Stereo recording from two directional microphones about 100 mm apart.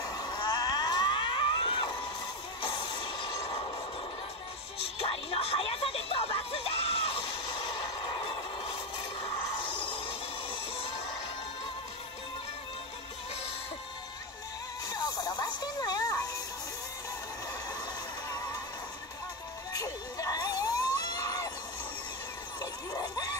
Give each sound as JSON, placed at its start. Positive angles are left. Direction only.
{"t": 0.0, "sound": "a sound", "side_deg": 40}
{"t": 2.9, "sound": "train", "side_deg": 50}
{"t": 3.4, "sound": "train", "side_deg": 70}
{"t": 4.7, "sound": "music", "side_deg": 75}
{"t": 7.5, "sound": "vehicle", "side_deg": 45}
{"t": 14.9, "sound": "music", "side_deg": 40}
{"t": 19.7, "sound": "a sound", "side_deg": 35}
{"t": 22.6, "sound": "dog", "side_deg": 40}